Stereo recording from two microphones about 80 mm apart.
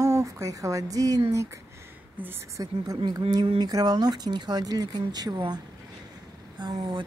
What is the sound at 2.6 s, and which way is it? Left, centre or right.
Speech, right.